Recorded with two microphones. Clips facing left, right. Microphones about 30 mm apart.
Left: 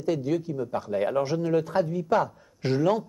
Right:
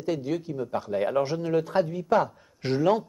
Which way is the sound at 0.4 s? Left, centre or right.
Right.